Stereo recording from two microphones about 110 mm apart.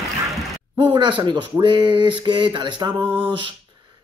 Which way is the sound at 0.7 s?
45° right (ahead or behind).